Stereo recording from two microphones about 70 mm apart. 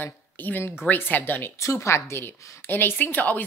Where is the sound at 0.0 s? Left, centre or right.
Left.